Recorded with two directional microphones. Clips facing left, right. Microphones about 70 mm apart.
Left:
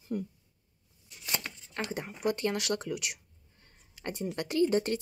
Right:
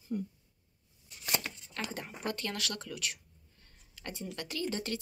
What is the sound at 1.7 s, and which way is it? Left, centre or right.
Speech, left.